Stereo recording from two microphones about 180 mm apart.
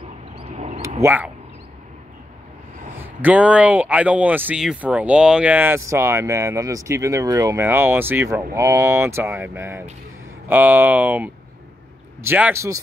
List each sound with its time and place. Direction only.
0.4 s duck: 35° right (ahead or behind)
1.0 s speech: 10° right (ahead or behind)
3.0 s speech: 10° right (ahead or behind)